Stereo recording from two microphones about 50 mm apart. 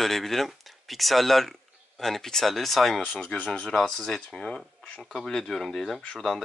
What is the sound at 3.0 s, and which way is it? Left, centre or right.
Speech, centre.